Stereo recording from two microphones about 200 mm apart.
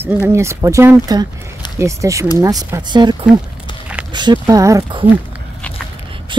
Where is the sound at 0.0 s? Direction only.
10° right (ahead or behind).